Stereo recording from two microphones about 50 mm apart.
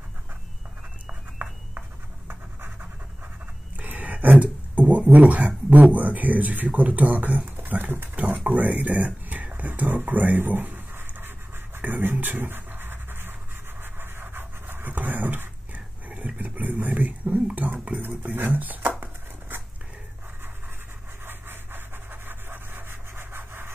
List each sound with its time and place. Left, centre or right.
2.2 s pant: right
3.7 s a sound: right
5.7 s speech: right
8.5 s a sound: right
11.8 s pant: right
16.1 s dog: right
17.7 s a sound: right
18.3 s speech: right
21.3 s rub: right